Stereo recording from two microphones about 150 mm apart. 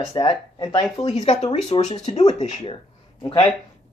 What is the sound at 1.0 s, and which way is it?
Speech, 50° left (ahead or behind).